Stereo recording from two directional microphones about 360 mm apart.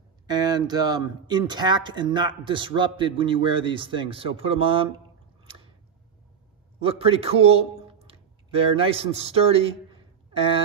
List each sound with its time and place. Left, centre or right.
0.3 s speech: centre
5.4 s squish: centre
6.8 s a man's voice: centre